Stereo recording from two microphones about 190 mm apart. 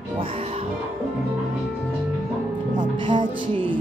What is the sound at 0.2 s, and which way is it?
Music, 30° right (ahead or behind).